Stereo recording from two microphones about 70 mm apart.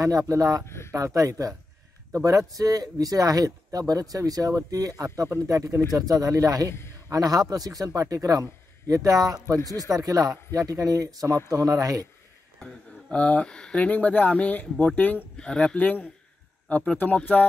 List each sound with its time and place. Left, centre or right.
0.3 s speech: right
0.7 s a sound: left
0.9 s speech: right
12.5 s speech: centre